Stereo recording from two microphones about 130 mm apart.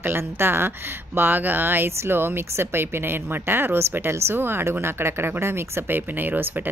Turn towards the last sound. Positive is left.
turn(degrees=-15)  # may be behind; listen again after turning